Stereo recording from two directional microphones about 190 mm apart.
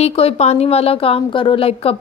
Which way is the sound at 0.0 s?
30° left (ahead or behind).